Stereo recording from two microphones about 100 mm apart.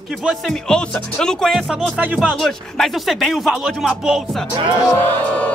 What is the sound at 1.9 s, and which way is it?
Speech, 10° right (ahead or behind).